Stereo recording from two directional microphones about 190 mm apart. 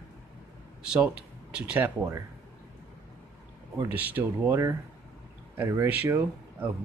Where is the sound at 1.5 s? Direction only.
10° right (ahead or behind).